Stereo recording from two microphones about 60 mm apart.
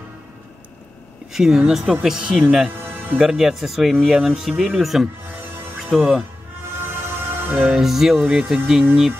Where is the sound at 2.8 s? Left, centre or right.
Right.